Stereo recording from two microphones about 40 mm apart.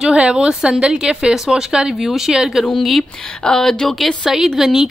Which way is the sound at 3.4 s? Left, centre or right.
Centre.